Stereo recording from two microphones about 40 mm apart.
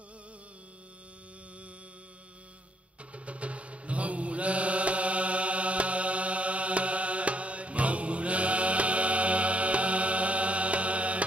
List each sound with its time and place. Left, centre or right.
3.1 s mantra: right